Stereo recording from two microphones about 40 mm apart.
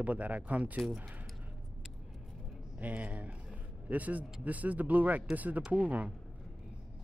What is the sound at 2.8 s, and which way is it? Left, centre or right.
Speech, right.